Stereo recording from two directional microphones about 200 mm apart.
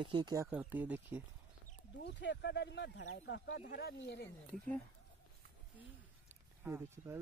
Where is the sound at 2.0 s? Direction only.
60° left (ahead or behind).